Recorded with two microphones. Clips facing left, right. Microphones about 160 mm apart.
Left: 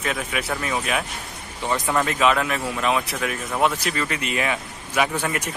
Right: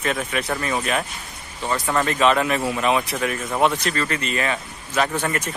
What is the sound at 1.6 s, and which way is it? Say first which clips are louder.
Speech: even; 20° left (ahead or behind).